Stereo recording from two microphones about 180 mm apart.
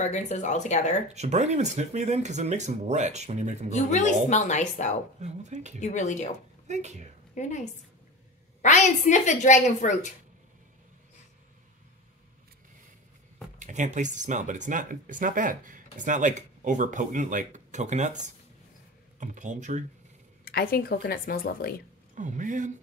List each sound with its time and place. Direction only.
0.0 s a woman's voice: 40° left (ahead or behind)
1.0 s speech: 40° right (ahead or behind)
3.7 s a woman's voice: 40° left (ahead or behind)
5.2 s speech: 40° right (ahead or behind)
5.8 s a woman's voice: 40° left (ahead or behind)
6.7 s speech: 40° right (ahead or behind)
7.3 s a woman's voice: 40° left (ahead or behind)
8.6 s a woman's voice: 40° left (ahead or behind)
13.6 s speech: 45° right (ahead or behind)
20.4 s speech: 60° left (ahead or behind)
22.1 s speech: 45° right (ahead or behind)